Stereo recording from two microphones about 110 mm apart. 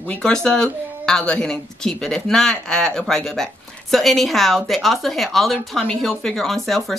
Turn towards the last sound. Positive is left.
turn(degrees=0)  # may be behind; listen again after turning